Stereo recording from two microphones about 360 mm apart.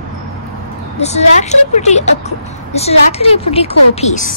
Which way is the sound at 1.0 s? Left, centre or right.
Centre.